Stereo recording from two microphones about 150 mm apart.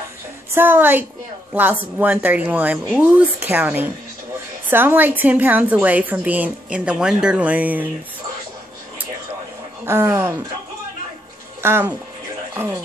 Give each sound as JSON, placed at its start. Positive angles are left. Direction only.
{"t": 0.6, "sound": "a woman's voice", "side_deg": -10}
{"t": 9.8, "sound": "a woman's voice", "side_deg": -15}
{"t": 11.6, "sound": "speech", "side_deg": -15}